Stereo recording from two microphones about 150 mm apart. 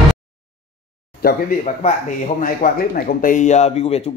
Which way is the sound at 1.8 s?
60° left (ahead or behind).